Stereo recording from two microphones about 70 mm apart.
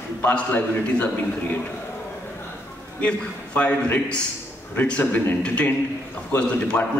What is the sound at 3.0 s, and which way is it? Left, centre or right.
A man's voice, left.